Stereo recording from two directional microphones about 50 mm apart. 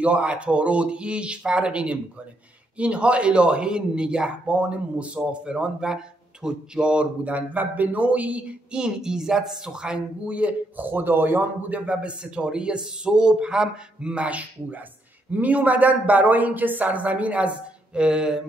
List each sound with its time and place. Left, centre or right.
0.0 s a man's voice: right
10.2 s a man's voice: right
10.8 s a man's voice: right
11.8 s a man's voice: right